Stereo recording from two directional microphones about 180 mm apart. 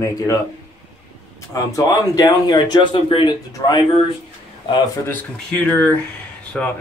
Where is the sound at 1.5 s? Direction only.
20° left (ahead or behind).